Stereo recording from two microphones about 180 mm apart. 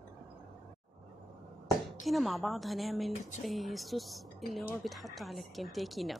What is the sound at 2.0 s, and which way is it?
A woman's voice, centre (ahead or behind).